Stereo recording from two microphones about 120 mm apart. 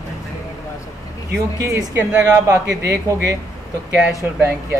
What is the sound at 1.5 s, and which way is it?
Speech, 30° right (ahead or behind).